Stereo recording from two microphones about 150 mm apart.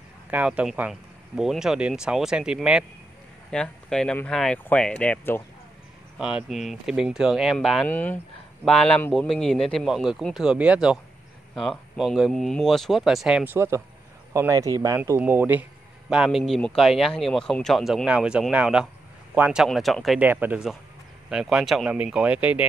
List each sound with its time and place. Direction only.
0.3 s speech: 10° right (ahead or behind)
3.4 s speech: 5° left (ahead or behind)
6.1 s speech: 5° right (ahead or behind)
16.1 s speech: 5° right (ahead or behind)
20.2 s speech: 10° right (ahead or behind)